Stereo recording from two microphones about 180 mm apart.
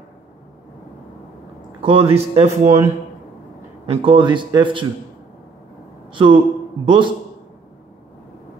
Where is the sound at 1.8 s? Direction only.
35° right (ahead or behind).